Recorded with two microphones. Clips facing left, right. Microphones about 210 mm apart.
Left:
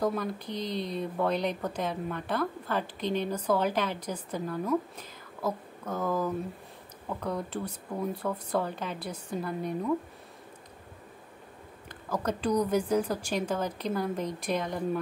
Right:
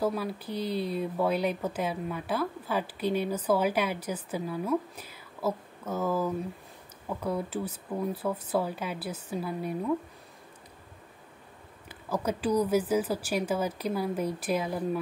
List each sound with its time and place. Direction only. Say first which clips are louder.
0.0 s speech: even; 5° right (ahead or behind)
11.9 s speech: right 1 dB; 10° right (ahead or behind)